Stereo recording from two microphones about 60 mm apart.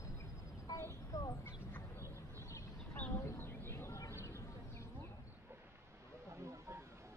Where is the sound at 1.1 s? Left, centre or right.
Left.